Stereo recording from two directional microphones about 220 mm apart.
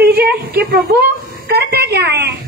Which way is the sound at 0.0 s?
45° right (ahead or behind).